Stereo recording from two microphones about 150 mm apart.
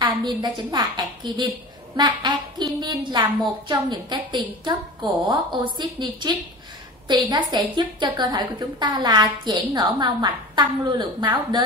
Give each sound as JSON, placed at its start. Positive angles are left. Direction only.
{"t": 0.0, "sound": "a woman's voice", "side_deg": -30}